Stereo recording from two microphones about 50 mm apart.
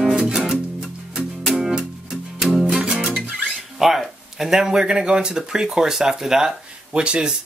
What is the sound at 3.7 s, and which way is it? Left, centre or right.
Speech, centre.